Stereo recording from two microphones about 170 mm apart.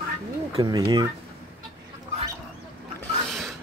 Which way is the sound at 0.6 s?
20° right (ahead or behind).